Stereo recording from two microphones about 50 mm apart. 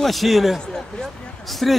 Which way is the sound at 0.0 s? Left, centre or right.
Centre.